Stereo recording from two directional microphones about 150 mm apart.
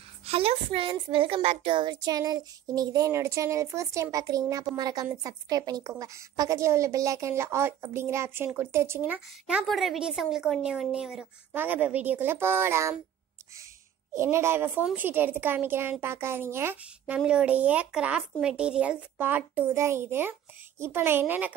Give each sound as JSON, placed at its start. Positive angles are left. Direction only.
{"t": 0.2, "sound": "a woman's voice", "side_deg": -40}
{"t": 14.1, "sound": "a woman's voice", "side_deg": -15}